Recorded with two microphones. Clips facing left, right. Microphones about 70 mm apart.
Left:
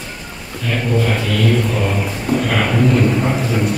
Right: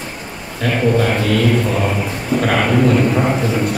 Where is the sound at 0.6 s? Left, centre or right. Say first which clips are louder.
Right 3 dB; right.